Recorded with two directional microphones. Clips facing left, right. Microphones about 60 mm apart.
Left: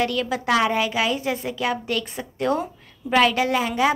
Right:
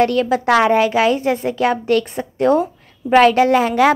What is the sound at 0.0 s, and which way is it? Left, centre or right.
A woman's voice, right.